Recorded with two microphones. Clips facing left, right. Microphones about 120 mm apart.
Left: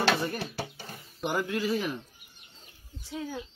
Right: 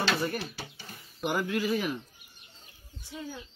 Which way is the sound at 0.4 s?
55° left (ahead or behind).